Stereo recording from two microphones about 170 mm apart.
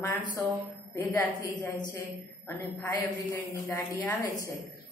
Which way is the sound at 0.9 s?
15° left (ahead or behind).